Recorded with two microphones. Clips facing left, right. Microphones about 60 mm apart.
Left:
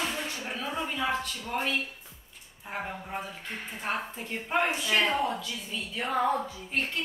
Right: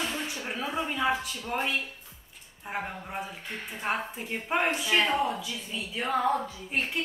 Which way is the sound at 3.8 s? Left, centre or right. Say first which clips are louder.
Right 2 dB; centre.